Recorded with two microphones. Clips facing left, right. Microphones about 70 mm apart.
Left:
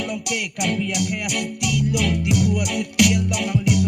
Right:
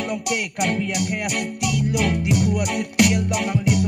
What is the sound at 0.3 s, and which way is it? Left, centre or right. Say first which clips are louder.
Music: right 2 dB; right.